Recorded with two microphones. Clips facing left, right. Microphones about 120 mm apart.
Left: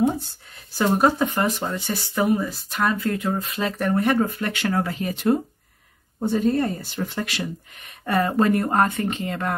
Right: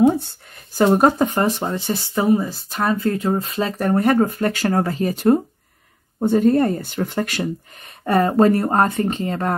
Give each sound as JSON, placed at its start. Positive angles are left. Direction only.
{"t": 0.9, "sound": "speech", "side_deg": -40}
{"t": 1.6, "sound": "speech", "side_deg": -25}
{"t": 8.0, "sound": "speech", "side_deg": -35}